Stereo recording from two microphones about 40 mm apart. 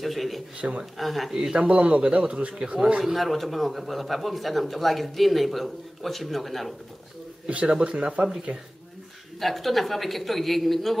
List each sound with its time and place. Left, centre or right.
0.0 s speech: centre
0.6 s speech: right
0.9 s a man's voice: centre
1.3 s speech: centre
1.6 s speech: right
3.0 s a man's voice: centre
7.4 s speech: right
8.5 s speech: right
9.4 s a man's voice: centre